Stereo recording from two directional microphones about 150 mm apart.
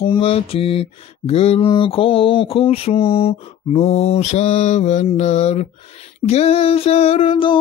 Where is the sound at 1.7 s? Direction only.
35° left (ahead or behind).